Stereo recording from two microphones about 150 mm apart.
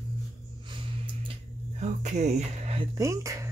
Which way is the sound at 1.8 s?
50° right (ahead or behind).